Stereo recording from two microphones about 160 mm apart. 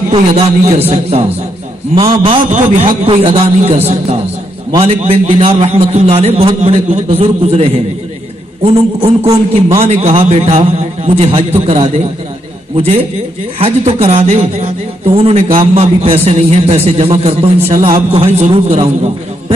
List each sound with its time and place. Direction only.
0.3 s a man's voice: 45° right (ahead or behind)
2.5 s a man's voice: 55° right (ahead or behind)